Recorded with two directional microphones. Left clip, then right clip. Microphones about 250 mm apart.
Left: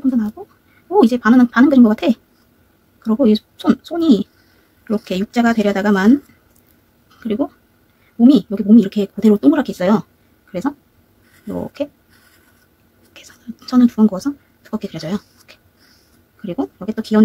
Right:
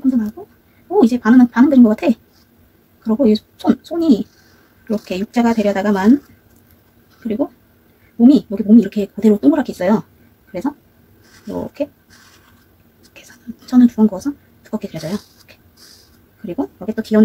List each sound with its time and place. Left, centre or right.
0.9 s speech: left
8.3 s speech: centre
13.1 s speech: centre
16.4 s speech: centre